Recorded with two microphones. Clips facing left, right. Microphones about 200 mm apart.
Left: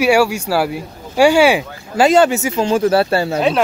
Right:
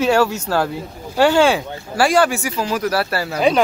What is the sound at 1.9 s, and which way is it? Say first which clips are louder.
Speech: left 4 dB; 20° left (ahead or behind).